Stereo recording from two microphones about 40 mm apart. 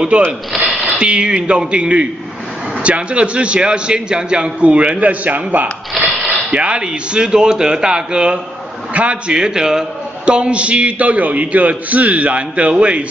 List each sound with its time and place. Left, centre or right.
0.1 s a man's voice: right
6.5 s a man's voice: right